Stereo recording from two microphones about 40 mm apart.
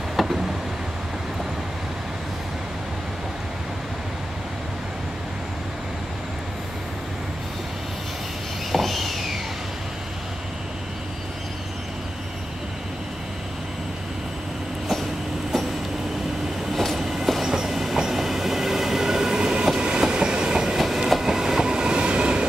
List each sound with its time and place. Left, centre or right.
0.1 s vehicle: centre
8.7 s a sound: centre
16.7 s train: centre
17.3 s train: centre
20.7 s train: centre; by 22.5 s right